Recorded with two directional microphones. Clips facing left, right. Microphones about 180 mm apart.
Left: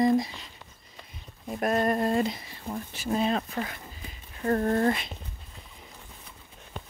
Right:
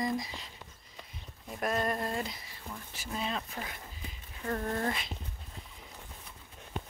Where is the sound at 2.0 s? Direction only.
25° left (ahead or behind).